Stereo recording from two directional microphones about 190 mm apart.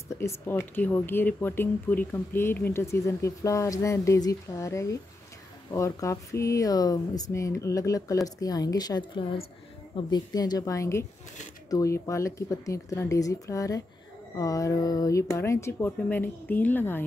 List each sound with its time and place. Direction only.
0.1 s a woman's voice: 15° left (ahead or behind)